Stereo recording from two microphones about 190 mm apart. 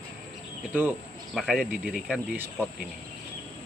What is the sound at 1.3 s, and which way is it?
Speech, centre (ahead or behind).